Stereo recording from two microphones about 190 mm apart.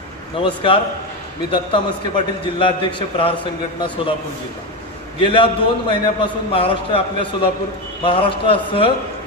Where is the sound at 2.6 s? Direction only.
25° left (ahead or behind).